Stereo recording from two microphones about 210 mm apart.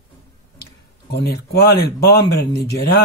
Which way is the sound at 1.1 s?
50° left (ahead or behind).